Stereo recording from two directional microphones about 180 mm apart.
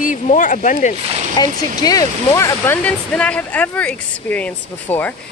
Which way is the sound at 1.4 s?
20° left (ahead or behind).